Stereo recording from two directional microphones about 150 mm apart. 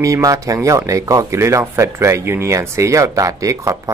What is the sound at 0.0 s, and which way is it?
Speech, 20° right (ahead or behind).